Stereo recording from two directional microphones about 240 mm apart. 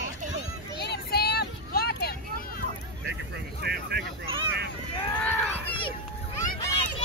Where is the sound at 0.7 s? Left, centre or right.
Left.